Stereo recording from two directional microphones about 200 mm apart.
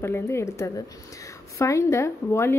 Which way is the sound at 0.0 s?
15° left (ahead or behind).